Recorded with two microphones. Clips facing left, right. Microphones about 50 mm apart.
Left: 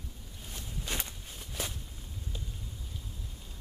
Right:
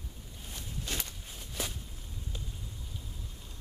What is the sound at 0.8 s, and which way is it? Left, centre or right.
Walk, centre.